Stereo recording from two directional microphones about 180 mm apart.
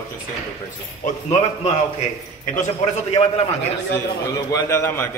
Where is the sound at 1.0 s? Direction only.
40° left (ahead or behind).